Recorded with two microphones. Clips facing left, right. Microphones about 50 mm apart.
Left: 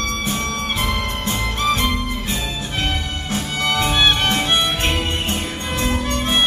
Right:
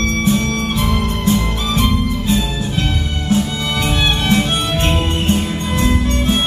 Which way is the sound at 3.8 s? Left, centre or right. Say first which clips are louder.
Even; left.